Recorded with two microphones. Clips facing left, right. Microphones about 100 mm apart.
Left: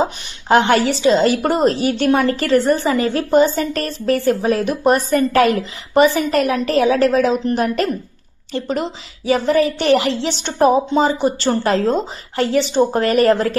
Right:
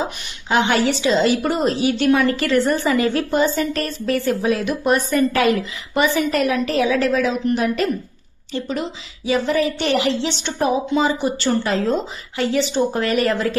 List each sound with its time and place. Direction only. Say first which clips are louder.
0.0 s a woman's voice: left 6 dB; 45° left (ahead or behind)